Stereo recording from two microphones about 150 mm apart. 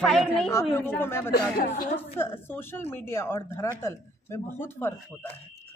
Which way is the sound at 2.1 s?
15° left (ahead or behind).